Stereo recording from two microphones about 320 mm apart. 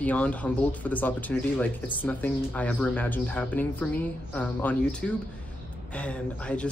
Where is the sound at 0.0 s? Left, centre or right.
Centre.